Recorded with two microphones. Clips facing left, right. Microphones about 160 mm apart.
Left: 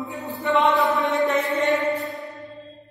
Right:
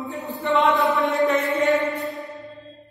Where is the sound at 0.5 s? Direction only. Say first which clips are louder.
Even; centre (ahead or behind).